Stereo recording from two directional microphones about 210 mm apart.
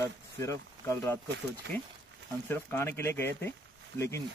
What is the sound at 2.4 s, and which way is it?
Speech, 10° left (ahead or behind).